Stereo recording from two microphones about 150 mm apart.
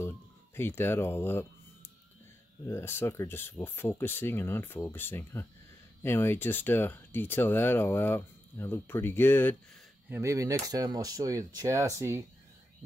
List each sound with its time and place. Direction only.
0.6 s speech: 15° left (ahead or behind)
2.6 s speech: 15° left (ahead or behind)
10.0 s speech: 15° right (ahead or behind)